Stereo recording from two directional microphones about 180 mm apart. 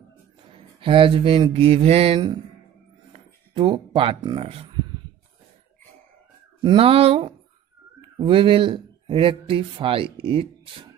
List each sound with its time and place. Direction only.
0.5 s a sound: 30° right (ahead or behind)
3.1 s speech: 30° right (ahead or behind)
6.6 s speech: 30° right (ahead or behind)